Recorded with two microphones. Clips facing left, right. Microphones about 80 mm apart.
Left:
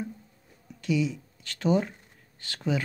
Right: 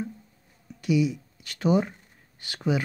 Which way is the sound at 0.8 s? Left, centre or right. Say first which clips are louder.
Right 3 dB; centre.